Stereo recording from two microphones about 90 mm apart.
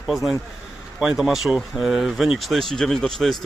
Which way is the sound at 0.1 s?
Centre (ahead or behind).